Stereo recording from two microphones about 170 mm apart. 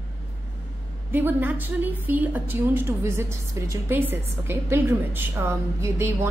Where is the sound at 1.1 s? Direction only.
10° right (ahead or behind).